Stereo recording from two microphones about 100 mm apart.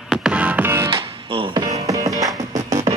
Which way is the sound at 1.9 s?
35° right (ahead or behind).